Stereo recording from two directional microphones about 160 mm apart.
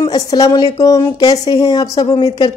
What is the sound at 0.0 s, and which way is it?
A woman's voice, 25° left (ahead or behind).